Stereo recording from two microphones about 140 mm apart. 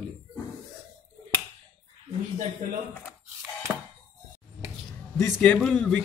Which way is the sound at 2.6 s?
70° right (ahead or behind).